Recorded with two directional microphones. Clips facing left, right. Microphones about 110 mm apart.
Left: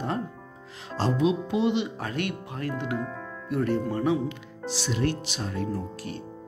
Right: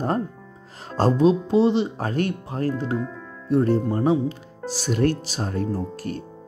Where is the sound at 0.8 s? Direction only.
45° right (ahead or behind).